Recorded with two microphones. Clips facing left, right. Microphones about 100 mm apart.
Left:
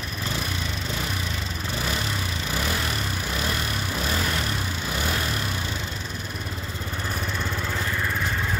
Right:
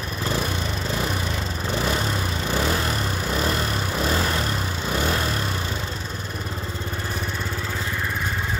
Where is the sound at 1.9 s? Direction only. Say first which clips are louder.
Right 4 dB; 35° right (ahead or behind).